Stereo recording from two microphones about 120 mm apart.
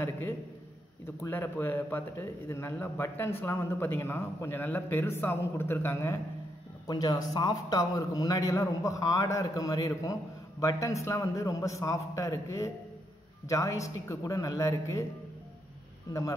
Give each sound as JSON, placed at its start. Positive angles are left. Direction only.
{"t": 1.0, "sound": "a man's voice", "side_deg": 20}
{"t": 6.9, "sound": "a man's voice", "side_deg": 35}
{"t": 16.1, "sound": "a man's voice", "side_deg": 25}